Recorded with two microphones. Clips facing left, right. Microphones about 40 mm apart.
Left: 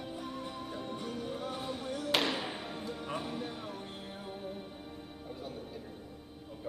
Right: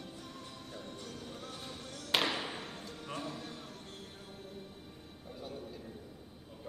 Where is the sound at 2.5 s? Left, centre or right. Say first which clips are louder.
Left 4 dB; centre.